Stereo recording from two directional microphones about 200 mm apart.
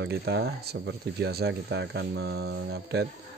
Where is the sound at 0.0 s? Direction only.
55° right (ahead or behind).